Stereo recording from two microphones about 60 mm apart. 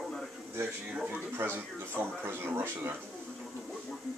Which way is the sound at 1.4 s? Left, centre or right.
Right.